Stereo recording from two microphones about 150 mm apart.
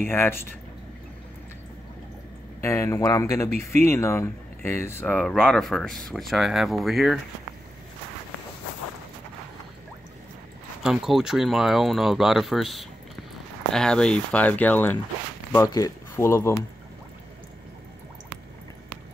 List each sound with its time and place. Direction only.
0.0 s speech: 15° left (ahead or behind)
2.6 s speech: 20° left (ahead or behind); by 7.2 s centre (ahead or behind)
10.8 s speech: 5° right (ahead or behind)
15.5 s speech: 20° left (ahead or behind)